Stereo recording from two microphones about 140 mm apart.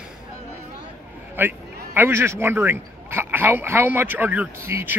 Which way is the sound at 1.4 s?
15° right (ahead or behind).